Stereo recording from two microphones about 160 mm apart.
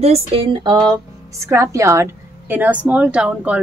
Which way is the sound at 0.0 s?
35° right (ahead or behind).